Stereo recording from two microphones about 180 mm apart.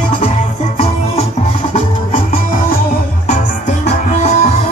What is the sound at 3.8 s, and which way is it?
Music, 35° left (ahead or behind).